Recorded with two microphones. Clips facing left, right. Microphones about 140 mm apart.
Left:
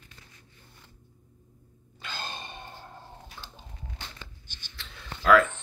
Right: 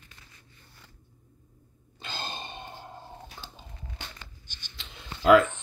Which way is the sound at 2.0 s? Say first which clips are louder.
Right 1 dB; 30° right (ahead or behind).